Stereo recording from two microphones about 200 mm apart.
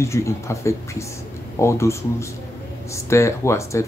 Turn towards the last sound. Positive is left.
turn(degrees=15)  # may be behind; listen again after turning